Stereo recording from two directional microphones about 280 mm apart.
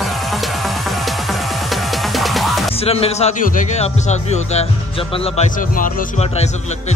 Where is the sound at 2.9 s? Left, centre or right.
Left.